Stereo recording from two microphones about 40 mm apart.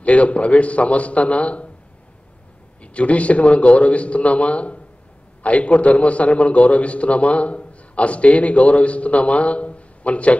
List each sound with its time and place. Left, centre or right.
0.0 s a man's voice: left
2.8 s a man's voice: left